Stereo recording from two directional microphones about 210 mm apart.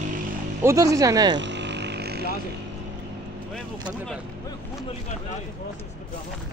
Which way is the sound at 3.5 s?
Centre (ahead or behind).